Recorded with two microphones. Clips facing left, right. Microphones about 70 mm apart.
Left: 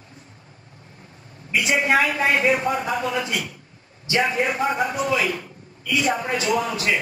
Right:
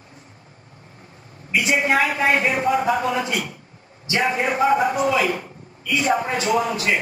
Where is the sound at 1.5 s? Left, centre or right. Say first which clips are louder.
Right 1 dB; left.